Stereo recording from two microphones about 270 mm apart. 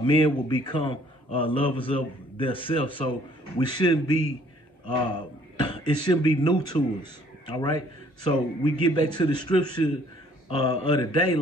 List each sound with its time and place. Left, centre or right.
0.0 s a man's voice: centre
5.6 s a man's voice: centre